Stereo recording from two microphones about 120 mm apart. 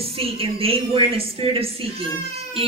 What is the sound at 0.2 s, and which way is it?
A woman's voice, 55° right (ahead or behind).